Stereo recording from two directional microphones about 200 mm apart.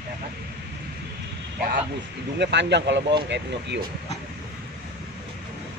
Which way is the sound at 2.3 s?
60° right (ahead or behind).